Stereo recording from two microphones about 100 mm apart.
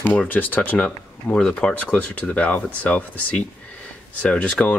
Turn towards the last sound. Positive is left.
turn(degrees=10)  # may be behind; listen again after turning